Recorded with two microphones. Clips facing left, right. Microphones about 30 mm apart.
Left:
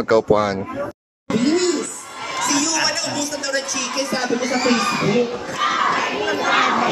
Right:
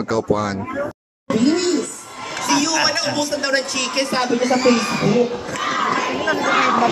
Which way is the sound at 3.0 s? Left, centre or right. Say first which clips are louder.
Right 4 dB; right.